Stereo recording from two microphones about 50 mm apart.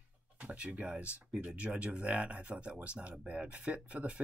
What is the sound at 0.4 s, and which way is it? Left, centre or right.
Speech, right.